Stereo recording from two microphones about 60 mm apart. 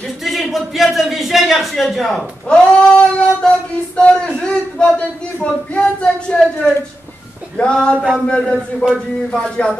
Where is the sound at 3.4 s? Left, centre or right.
Centre.